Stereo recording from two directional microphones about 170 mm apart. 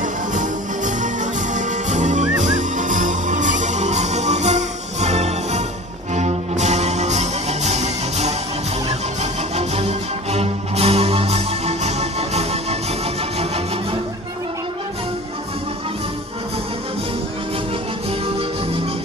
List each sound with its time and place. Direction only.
0.3 s music: 45° right (ahead or behind)